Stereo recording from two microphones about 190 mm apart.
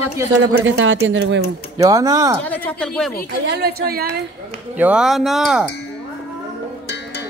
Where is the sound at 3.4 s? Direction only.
55° right (ahead or behind).